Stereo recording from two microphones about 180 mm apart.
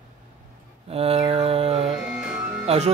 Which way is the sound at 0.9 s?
35° right (ahead or behind).